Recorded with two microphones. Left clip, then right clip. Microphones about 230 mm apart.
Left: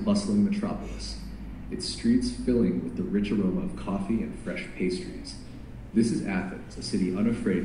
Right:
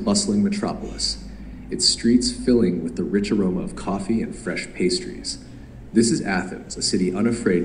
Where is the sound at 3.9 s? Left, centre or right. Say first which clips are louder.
Right 7 dB; right.